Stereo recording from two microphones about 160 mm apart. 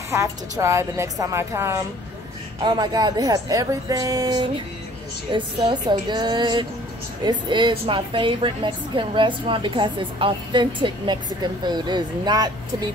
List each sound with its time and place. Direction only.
0.1 s a woman's voice: 15° right (ahead or behind)